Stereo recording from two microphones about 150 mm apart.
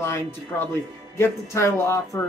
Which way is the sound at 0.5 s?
10° left (ahead or behind).